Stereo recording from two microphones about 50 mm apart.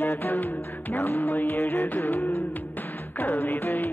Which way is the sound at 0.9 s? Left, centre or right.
Left.